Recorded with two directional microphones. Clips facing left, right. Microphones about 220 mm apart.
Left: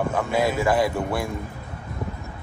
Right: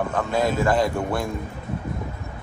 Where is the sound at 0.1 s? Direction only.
10° left (ahead or behind).